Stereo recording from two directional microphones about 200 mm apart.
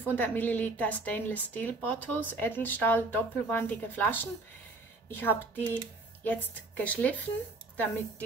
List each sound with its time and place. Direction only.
0.0 s a woman's voice: 10° left (ahead or behind)